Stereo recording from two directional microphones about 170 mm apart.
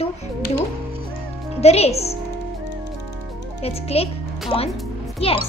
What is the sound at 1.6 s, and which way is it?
Speech, 40° left (ahead or behind).